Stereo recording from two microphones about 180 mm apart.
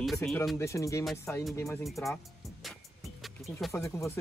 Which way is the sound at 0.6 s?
15° left (ahead or behind).